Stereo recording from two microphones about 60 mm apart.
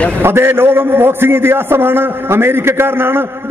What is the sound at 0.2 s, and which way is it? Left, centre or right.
A man's voice, right.